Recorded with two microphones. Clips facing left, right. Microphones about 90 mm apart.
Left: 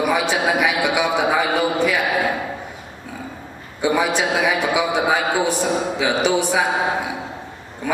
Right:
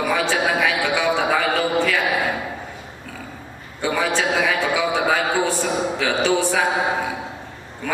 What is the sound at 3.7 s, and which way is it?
A man's voice, 15° left (ahead or behind).